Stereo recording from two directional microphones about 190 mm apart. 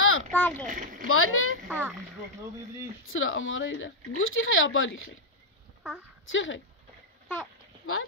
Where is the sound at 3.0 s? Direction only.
90° left.